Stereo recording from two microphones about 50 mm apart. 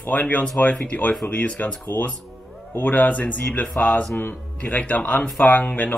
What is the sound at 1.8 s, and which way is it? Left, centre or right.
Speech, left.